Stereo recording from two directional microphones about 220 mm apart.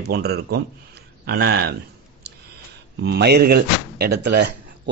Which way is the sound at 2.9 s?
50° right (ahead or behind).